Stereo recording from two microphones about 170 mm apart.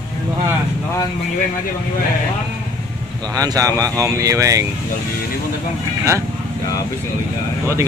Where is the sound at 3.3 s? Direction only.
20° right (ahead or behind).